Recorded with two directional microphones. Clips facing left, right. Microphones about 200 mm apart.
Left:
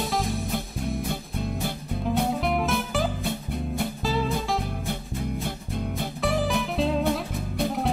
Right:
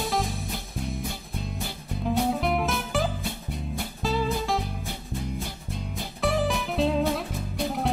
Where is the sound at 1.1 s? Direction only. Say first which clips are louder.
Left 5 dB; 55° left (ahead or behind).